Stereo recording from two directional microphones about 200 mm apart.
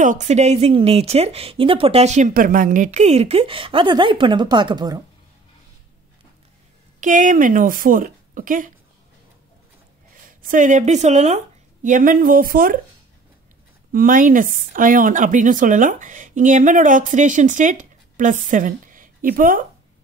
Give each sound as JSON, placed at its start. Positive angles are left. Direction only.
{"t": 0.0, "sound": "speech", "side_deg": -35}
{"t": 7.0, "sound": "speech", "side_deg": -40}
{"t": 10.4, "sound": "speech", "side_deg": -40}
{"t": 13.9, "sound": "speech", "side_deg": -45}